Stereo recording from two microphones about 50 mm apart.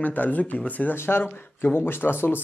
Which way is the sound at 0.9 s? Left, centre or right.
Left.